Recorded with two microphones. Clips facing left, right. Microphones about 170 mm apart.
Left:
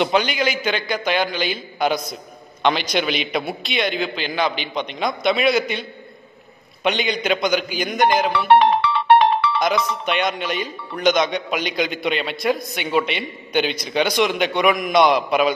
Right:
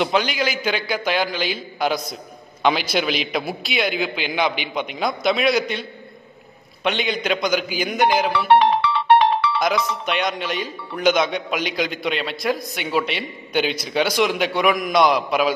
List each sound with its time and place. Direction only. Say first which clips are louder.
0.0 s a man's voice: left 1 dB; centre (ahead or behind)
8.5 s music: left 1 dB; 55° left (ahead or behind)
10.0 s a man's voice: left 1 dB; centre (ahead or behind)